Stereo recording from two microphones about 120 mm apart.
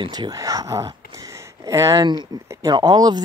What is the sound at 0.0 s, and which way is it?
Speech, 35° right (ahead or behind).